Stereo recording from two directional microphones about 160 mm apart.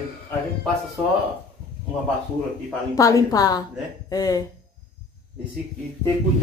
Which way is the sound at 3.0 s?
20° left (ahead or behind).